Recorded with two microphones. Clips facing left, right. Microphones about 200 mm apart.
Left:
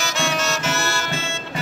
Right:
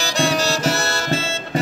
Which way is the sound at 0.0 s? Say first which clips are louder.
Right 4 dB; 35° right (ahead or behind).